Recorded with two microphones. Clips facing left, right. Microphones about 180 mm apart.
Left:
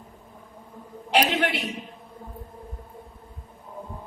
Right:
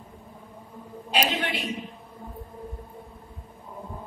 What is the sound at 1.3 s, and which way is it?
Speech, 75° left (ahead or behind).